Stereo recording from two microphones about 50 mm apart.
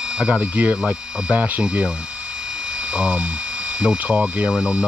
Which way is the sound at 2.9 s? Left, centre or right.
Centre.